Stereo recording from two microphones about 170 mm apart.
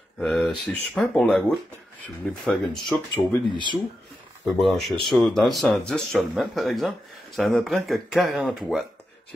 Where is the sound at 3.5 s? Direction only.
25° right (ahead or behind).